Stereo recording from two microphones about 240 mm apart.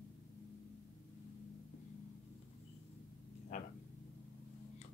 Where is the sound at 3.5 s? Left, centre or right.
Left.